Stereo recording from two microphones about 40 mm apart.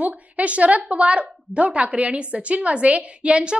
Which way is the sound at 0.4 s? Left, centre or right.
Right.